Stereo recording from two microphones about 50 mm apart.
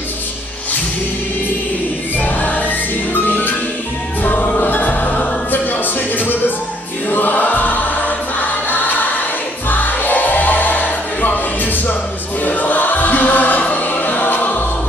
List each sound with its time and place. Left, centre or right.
2.1 s music: left
7.1 s choir: left
8.4 s music: left